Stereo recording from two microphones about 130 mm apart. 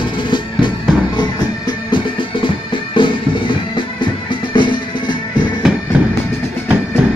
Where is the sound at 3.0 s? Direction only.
40° left (ahead or behind).